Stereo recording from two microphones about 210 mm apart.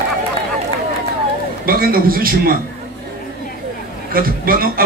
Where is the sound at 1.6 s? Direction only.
45° right (ahead or behind).